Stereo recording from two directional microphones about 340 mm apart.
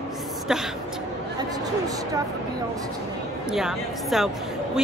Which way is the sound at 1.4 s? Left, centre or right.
Centre.